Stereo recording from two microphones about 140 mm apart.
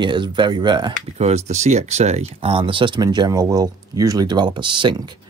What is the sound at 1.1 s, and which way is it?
Speech, 50° right (ahead or behind).